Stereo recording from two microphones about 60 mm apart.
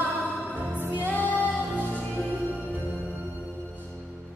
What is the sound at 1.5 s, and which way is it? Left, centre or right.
Music, right.